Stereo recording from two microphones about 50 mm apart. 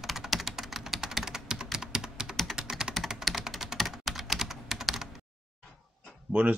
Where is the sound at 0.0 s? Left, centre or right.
Centre.